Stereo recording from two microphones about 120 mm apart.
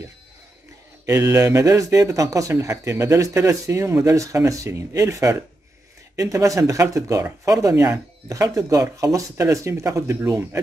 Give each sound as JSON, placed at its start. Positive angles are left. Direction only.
{"t": 1.0, "sound": "speech", "side_deg": -25}